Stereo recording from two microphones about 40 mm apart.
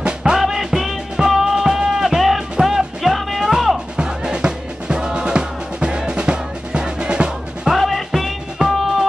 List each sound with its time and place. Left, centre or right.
0.0 s music: centre
3.9 s music: right
7.6 s music: centre